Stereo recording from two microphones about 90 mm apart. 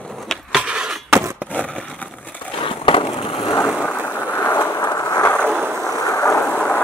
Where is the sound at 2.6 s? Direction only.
80° left.